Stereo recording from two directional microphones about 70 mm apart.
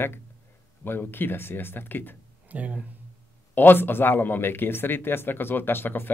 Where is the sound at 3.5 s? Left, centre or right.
Left.